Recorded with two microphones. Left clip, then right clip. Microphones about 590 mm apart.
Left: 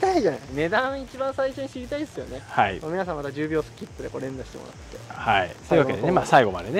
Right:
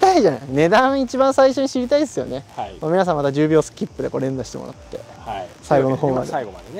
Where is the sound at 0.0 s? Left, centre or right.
Right.